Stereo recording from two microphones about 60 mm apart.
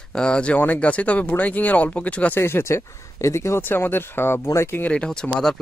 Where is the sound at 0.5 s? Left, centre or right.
Left.